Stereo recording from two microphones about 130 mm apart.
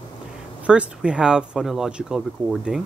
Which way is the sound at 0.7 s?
10° right (ahead or behind).